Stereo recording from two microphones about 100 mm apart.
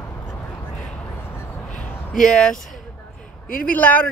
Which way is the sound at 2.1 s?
5° left (ahead or behind).